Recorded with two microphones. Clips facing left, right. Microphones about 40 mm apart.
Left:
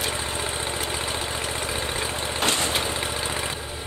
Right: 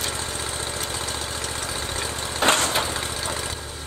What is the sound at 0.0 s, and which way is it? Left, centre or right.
Engine, centre.